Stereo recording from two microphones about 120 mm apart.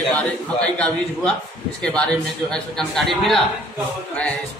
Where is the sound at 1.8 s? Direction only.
5° left (ahead or behind).